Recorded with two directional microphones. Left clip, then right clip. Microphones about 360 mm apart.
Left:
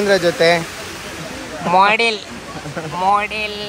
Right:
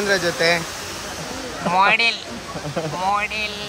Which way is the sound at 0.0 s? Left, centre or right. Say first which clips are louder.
Left 5 dB; centre.